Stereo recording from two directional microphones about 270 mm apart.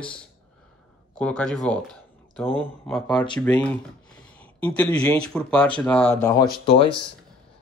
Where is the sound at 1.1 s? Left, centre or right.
Centre.